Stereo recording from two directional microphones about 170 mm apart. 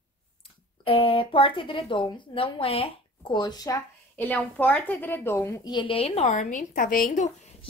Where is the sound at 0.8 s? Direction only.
35° left (ahead or behind).